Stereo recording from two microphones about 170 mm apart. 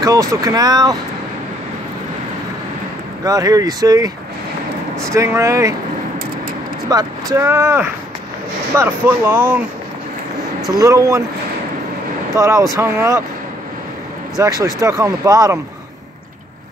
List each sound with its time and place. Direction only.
0.0 s speech: 20° right (ahead or behind)
3.3 s speech: 20° right (ahead or behind)
6.9 s speech: 20° right (ahead or behind)
10.7 s speech: 20° right (ahead or behind)
12.4 s speech: 20° right (ahead or behind)
14.3 s speech: 20° right (ahead or behind)